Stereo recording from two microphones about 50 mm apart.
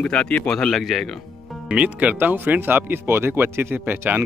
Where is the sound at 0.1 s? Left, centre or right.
Centre.